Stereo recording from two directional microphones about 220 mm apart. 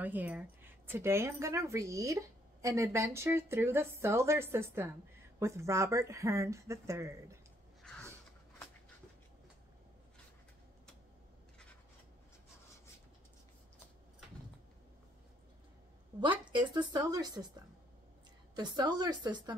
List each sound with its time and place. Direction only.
0.0 s a woman's voice: 5° right (ahead or behind)
7.8 s a sound: 5° left (ahead or behind)
16.2 s a woman's voice: 20° right (ahead or behind)
18.5 s a woman's voice: 20° right (ahead or behind)